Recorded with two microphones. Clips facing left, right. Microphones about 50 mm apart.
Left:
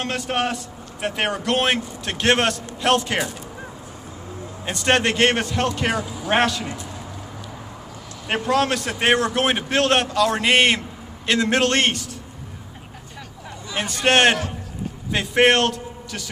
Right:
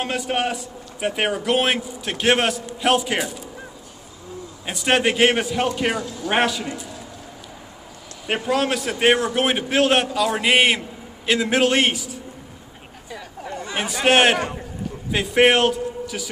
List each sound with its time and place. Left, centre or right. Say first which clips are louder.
0.0 s a man's voice: right 1 dB; centre
4.6 s a man's voice: even; centre
6.0 s speech: even; centre
6.3 s a man's voice: left 1 dB; centre
8.3 s a man's voice: left 1 dB; centre
13.5 s a sound: right 6 dB; right
13.7 s a man's voice: right 1 dB; centre